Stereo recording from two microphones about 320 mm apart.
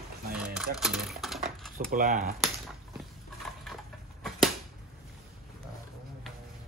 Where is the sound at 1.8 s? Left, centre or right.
Right.